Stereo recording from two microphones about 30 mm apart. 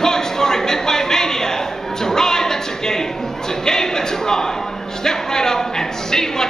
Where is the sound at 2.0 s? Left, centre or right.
Centre.